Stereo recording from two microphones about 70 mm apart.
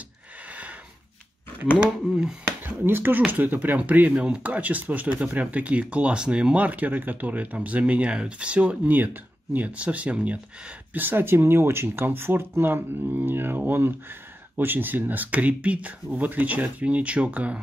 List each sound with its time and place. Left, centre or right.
1.8 s speech: centre
2.6 s speech: right